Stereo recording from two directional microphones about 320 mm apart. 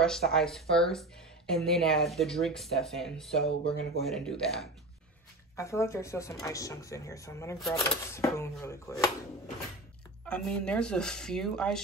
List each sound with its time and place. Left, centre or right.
0.0 s speech: centre
3.4 s speech: centre
4.0 s speech: centre
10.2 s speech: centre